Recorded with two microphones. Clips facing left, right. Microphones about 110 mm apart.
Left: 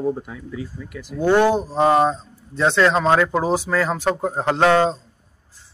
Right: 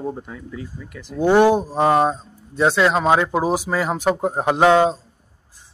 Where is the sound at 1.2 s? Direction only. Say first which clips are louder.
Right 2 dB; 15° right (ahead or behind).